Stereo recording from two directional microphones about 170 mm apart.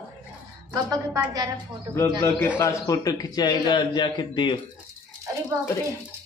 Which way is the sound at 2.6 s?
20° left (ahead or behind).